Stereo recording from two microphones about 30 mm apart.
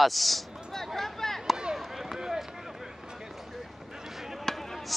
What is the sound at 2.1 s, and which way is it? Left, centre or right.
Run, centre.